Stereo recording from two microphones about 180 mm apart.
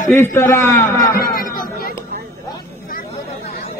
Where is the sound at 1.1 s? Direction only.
55° left (ahead or behind).